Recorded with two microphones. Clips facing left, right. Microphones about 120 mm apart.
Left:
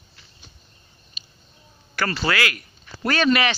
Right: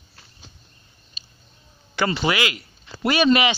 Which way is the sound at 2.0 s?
15° right (ahead or behind).